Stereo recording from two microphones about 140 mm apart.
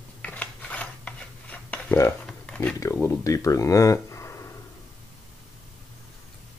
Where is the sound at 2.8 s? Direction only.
20° left (ahead or behind).